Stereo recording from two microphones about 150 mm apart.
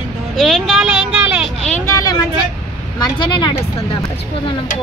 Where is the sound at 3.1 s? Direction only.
30° left (ahead or behind).